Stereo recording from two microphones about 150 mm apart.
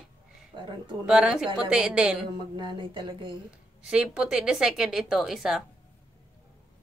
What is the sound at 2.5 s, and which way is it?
Speech, 35° right (ahead or behind).